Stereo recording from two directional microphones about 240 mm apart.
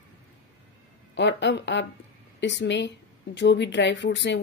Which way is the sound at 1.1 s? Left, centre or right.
Left.